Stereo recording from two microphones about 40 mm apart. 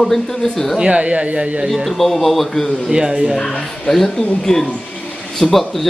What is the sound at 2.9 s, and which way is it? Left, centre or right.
Speech, centre.